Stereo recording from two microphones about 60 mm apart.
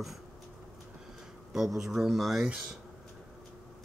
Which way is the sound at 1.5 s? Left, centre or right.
Centre.